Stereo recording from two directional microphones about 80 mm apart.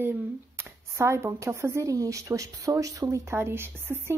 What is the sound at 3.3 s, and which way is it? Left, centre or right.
Speech, right.